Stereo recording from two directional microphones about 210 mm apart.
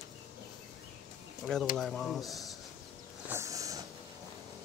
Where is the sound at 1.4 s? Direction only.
Centre (ahead or behind).